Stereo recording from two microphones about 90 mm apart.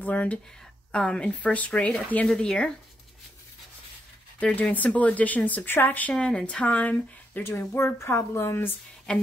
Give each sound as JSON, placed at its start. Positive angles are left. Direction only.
{"t": 0.0, "sound": "speech", "side_deg": 15}
{"t": 4.4, "sound": "speech", "side_deg": 15}
{"t": 9.1, "sound": "speech", "side_deg": 10}